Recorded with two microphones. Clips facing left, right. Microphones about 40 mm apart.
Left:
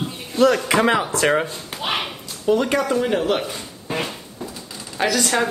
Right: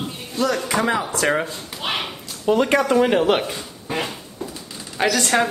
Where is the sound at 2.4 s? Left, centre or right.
Right.